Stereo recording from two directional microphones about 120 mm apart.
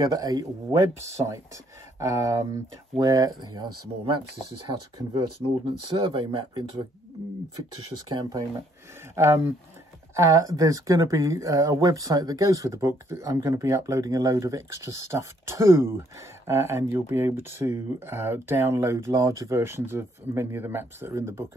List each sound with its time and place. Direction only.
0.0 s speech: 30° right (ahead or behind)
8.1 s speech: 35° right (ahead or behind)
9.1 s speech: 25° right (ahead or behind)